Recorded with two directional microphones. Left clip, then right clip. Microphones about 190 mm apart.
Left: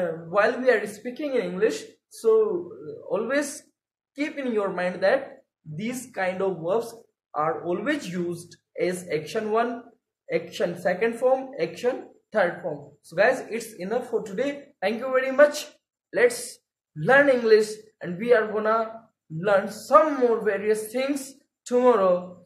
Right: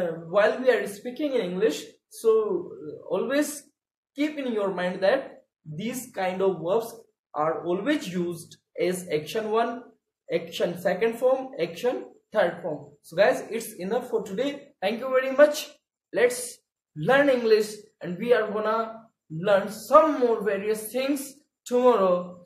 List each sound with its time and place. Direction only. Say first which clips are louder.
0.3 s speech: even; 10° right (ahead or behind)
4.1 s a man's voice: even; 10° right (ahead or behind)